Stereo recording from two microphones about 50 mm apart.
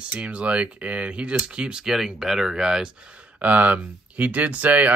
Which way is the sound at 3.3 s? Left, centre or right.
Right.